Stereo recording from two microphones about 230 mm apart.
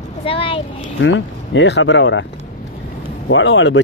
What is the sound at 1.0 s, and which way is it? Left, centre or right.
Speech, left.